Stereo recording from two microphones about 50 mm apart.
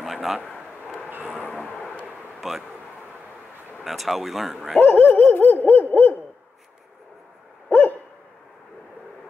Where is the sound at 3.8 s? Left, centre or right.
Centre.